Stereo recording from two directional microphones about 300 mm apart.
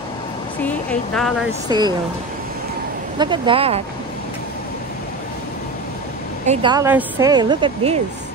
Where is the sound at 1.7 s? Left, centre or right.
Centre.